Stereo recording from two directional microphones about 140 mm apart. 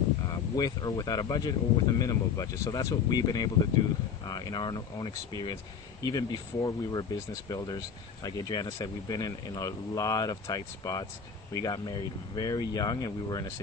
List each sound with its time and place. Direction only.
0.3 s speech: 30° left (ahead or behind)